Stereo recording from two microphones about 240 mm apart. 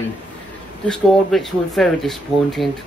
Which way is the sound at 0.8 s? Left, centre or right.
Centre.